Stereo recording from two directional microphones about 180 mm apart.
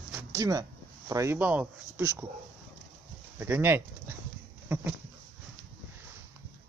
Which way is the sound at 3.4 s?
10° right (ahead or behind).